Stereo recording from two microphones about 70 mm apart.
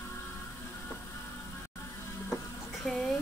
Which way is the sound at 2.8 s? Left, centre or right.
Centre.